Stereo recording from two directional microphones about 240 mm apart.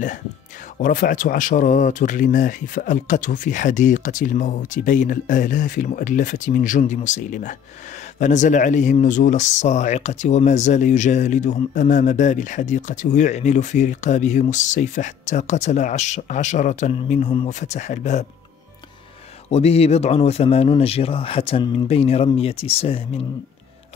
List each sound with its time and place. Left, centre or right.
0.7 s speech: left
19.5 s speech: left